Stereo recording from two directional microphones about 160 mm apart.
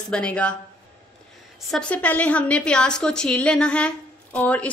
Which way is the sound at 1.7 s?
5° left (ahead or behind).